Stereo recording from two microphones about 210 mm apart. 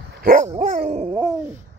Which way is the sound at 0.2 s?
40° right (ahead or behind).